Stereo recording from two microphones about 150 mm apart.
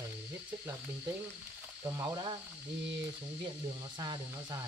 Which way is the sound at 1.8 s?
20° right (ahead or behind).